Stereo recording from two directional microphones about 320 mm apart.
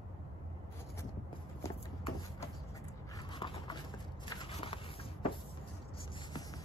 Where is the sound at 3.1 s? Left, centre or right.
Centre.